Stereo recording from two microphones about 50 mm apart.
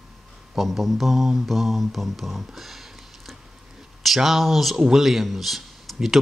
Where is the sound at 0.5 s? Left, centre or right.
Centre.